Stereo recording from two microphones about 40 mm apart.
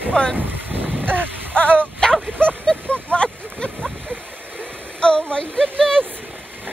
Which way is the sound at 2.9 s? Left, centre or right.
Left.